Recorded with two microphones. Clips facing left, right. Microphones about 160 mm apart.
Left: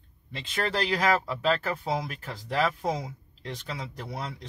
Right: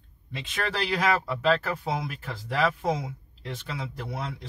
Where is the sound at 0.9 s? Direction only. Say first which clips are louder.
Right 2 dB; centre (ahead or behind).